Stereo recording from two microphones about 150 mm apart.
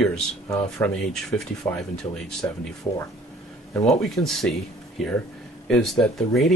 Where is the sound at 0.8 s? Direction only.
15° left (ahead or behind).